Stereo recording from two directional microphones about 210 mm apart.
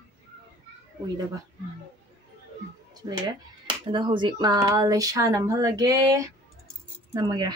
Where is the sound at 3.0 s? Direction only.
20° right (ahead or behind).